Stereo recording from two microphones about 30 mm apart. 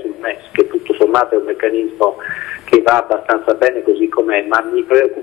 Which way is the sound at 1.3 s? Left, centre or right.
Centre.